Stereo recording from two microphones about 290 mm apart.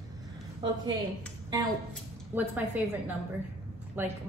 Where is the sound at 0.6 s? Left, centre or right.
Centre.